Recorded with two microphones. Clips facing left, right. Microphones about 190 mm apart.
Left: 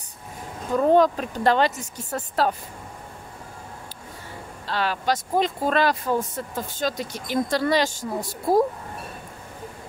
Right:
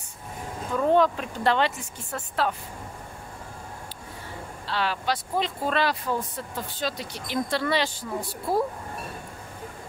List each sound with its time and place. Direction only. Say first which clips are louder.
0.7 s speech: left 3 dB; 40° left (ahead or behind)
4.6 s speech: left 3 dB; 45° left (ahead or behind)